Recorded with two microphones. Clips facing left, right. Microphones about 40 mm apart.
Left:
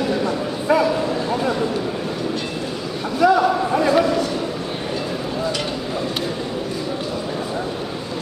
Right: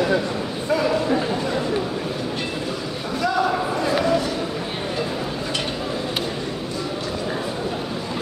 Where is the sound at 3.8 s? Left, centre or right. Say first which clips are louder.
Left 5 dB; centre.